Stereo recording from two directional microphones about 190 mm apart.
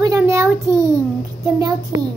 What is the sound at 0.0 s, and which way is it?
Child singing, 15° right (ahead or behind).